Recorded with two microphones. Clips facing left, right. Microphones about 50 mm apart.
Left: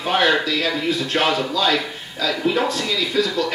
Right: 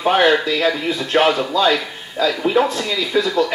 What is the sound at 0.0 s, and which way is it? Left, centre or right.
A man's voice, centre.